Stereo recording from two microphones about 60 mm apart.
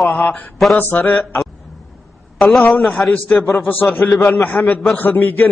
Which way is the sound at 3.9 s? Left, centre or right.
Left.